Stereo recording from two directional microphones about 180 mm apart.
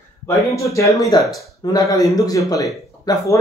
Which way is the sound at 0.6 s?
15° left (ahead or behind).